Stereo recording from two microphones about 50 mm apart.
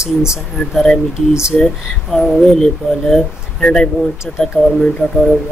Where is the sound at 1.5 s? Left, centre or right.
Centre.